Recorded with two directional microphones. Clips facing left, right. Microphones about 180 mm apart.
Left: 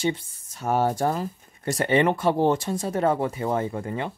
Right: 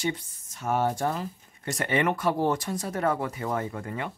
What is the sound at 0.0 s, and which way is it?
Speech, 30° left (ahead or behind).